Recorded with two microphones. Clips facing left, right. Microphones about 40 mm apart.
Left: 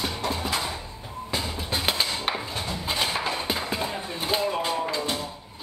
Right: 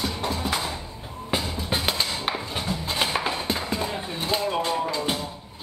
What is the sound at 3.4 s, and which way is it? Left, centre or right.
Clip-clop, centre.